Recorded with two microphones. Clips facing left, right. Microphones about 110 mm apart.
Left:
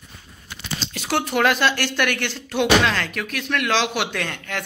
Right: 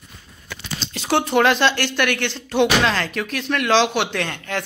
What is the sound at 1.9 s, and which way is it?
Speech, 10° left (ahead or behind).